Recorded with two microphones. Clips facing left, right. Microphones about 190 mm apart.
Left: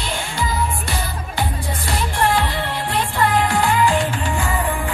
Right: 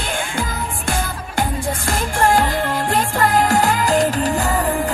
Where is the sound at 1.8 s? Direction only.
45° right (ahead or behind).